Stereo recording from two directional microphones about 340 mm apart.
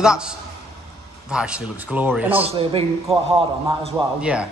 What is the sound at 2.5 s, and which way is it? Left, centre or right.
A man's voice, centre.